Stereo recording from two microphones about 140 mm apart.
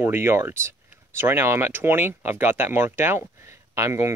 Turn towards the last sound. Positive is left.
turn(degrees=-20)  # may be behind; listen again after turning